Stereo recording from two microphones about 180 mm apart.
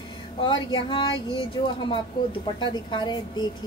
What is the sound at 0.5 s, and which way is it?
Speech, 25° left (ahead or behind).